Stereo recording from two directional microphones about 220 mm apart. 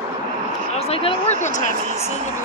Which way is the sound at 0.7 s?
25° left (ahead or behind).